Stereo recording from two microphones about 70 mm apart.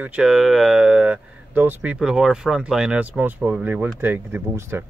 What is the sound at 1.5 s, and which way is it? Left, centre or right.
Speech, right.